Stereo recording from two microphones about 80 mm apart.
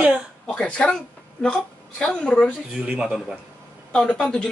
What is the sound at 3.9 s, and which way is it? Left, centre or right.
Speech, centre.